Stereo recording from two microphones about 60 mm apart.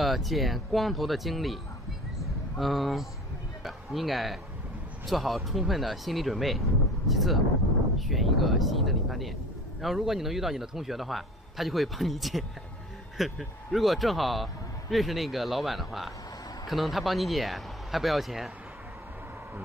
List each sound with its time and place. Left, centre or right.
0.0 s speech: centre
2.6 s speech: centre